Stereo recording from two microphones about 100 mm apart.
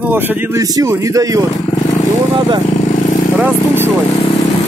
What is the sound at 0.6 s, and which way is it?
Speech, 35° right (ahead or behind).